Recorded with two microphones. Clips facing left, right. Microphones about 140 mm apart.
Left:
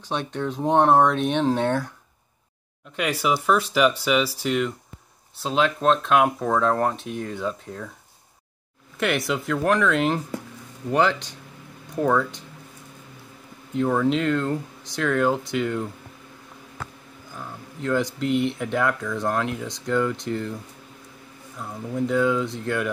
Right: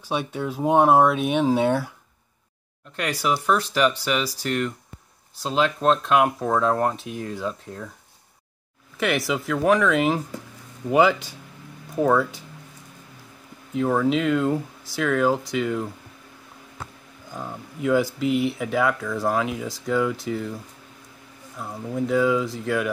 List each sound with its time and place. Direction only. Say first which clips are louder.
0.1 s speech: right 1 dB; 10° right (ahead or behind)
3.0 s speech: left 1 dB; 5° left (ahead or behind)
8.9 s speech: even; centre (ahead or behind)
13.7 s speech: even; 5° right (ahead or behind)
17.4 s speech: right 3 dB; 20° right (ahead or behind)
17.8 s speech: right 3 dB; 5° right (ahead or behind)
21.5 s speech: even; 5° right (ahead or behind)